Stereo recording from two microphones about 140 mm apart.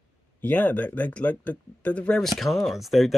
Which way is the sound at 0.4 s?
10° left (ahead or behind).